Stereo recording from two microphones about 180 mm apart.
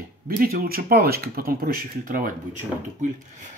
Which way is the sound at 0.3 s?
50° right (ahead or behind).